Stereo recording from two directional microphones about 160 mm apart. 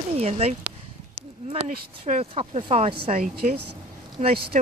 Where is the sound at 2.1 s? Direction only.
40° right (ahead or behind).